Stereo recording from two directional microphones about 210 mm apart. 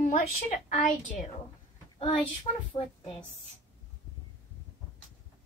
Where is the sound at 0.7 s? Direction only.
40° left (ahead or behind).